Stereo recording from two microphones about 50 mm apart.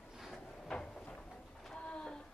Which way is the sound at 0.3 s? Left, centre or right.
Centre.